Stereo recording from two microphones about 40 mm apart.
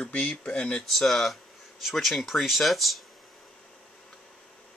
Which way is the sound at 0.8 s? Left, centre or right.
Centre.